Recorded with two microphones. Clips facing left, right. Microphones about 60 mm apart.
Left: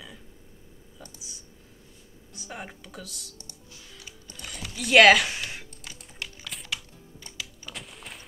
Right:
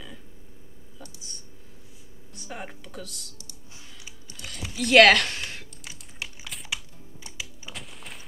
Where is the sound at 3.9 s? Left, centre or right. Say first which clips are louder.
Left 2 dB; centre.